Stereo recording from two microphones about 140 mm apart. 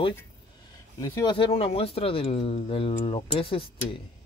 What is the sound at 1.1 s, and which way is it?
Speech, 35° left (ahead or behind).